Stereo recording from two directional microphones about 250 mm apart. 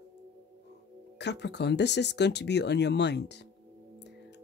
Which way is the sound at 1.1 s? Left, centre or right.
Left.